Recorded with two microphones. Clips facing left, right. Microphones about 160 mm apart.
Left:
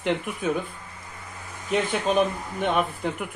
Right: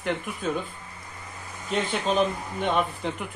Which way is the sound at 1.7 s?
10° left (ahead or behind).